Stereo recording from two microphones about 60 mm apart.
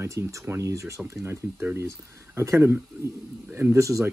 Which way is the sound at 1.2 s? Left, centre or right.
Right.